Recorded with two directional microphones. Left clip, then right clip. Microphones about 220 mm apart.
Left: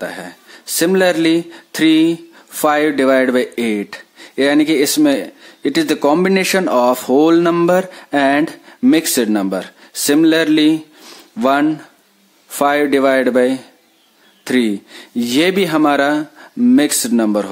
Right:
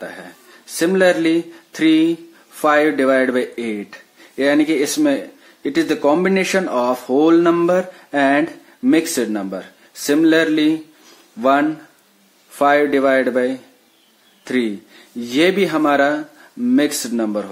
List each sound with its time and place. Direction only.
0.0 s speech: 45° left (ahead or behind)